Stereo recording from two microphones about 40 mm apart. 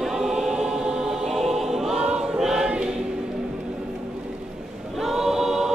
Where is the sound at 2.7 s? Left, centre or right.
Right.